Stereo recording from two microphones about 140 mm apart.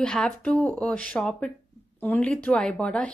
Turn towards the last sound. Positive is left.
turn(degrees=5)  # may be behind; listen again after turning